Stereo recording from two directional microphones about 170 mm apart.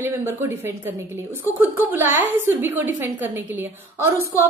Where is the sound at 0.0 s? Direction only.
10° right (ahead or behind).